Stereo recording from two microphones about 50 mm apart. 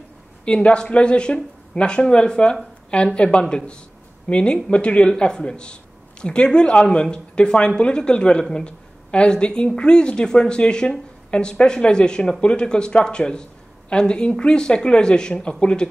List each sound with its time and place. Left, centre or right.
0.5 s a woman's voice: left